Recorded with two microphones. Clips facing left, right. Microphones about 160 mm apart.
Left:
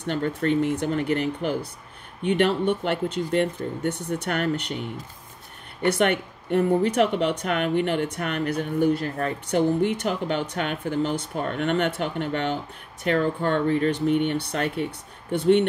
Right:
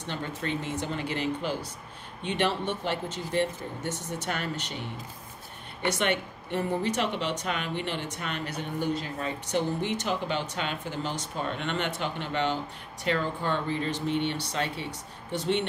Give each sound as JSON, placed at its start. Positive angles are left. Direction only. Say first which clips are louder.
{"t": 0.0, "sound": "speech", "louder": "left 9 dB", "side_deg": 60}
{"t": 5.9, "sound": "speech", "louder": "left 6 dB", "side_deg": 55}